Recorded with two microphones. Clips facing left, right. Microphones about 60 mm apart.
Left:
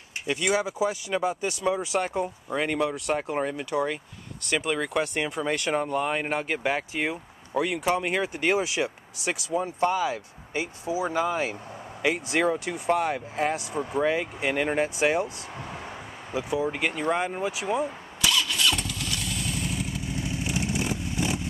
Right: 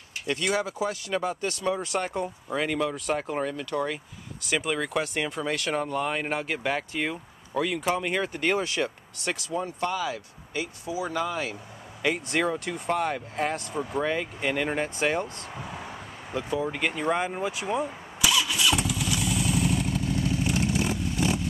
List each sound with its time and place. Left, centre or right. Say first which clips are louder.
0.3 s speech: left 2 dB; centre
3.4 s speech: left 2 dB; centre
4.5 s speech: left 1 dB; centre
9.5 s speech: left 5 dB; left
12.0 s speech: left 2 dB; centre
18.2 s vehicle: even; centre
20.1 s vehicle: right 4 dB; centre